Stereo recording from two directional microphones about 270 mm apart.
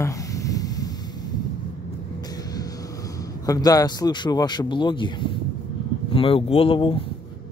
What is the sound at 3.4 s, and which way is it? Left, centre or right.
Speech, centre.